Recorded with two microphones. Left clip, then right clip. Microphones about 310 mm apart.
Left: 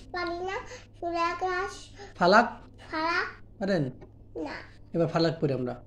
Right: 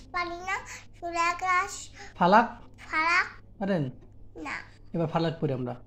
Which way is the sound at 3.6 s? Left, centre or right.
Right.